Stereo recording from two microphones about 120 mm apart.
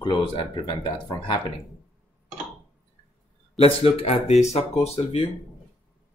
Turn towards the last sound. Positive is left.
turn(degrees=65)  # may be behind; listen again after turning